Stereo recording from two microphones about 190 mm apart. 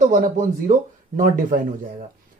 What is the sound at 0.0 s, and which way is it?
Speech, 45° right (ahead or behind).